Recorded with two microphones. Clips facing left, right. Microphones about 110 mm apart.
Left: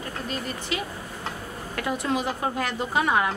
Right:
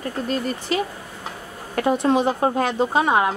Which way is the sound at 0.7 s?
40° right (ahead or behind).